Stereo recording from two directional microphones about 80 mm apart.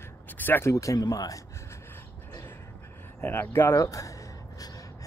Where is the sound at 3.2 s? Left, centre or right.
Left.